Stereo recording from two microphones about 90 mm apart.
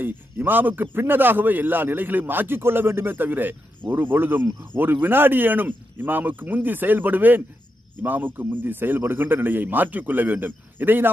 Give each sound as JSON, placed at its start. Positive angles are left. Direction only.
{"t": 0.0, "sound": "a man's voice", "side_deg": -20}